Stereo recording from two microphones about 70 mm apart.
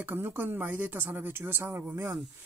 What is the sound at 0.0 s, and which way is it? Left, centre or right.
Speech, right.